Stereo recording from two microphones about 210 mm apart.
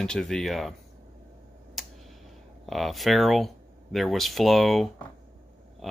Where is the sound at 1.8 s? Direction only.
Centre (ahead or behind).